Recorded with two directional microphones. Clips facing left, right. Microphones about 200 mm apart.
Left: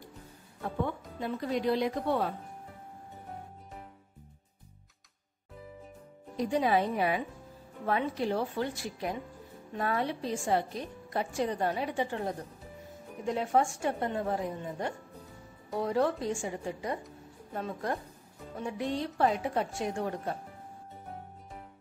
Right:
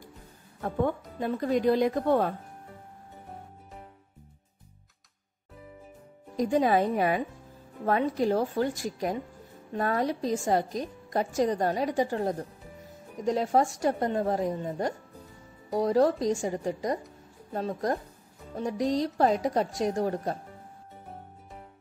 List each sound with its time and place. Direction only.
0.7 s a woman's voice: 50° right (ahead or behind)
6.3 s a woman's voice: 45° right (ahead or behind)